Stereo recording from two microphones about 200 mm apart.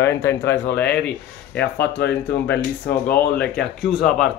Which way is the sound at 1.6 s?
55° left (ahead or behind).